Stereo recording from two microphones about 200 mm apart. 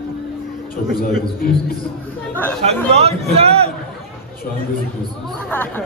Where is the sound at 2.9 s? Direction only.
30° right (ahead or behind).